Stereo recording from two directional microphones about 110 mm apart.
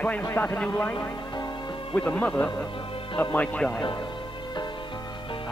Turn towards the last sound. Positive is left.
turn(degrees=5)  # may be behind; listen again after turning